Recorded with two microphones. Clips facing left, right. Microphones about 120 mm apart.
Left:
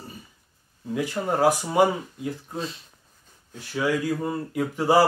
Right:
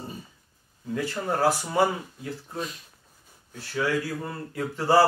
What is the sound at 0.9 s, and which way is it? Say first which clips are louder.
Speech: left 3 dB; 15° left (ahead or behind).